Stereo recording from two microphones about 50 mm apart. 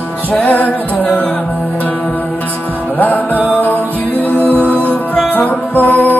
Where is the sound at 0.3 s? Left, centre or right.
Left.